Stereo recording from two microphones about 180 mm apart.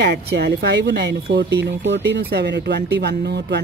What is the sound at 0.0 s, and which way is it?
Speech, 70° right (ahead or behind).